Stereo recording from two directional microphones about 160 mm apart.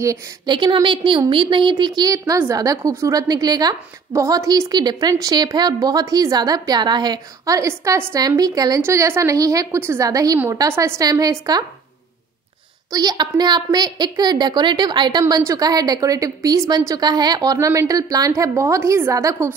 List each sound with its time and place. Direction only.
0.0 s a woman's voice: 25° right (ahead or behind)
12.9 s a woman's voice: 25° right (ahead or behind)